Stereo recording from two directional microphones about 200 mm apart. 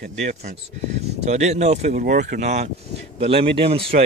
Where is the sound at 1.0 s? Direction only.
35° right (ahead or behind).